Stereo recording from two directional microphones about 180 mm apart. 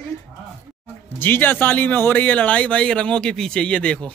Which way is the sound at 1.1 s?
10° left (ahead or behind).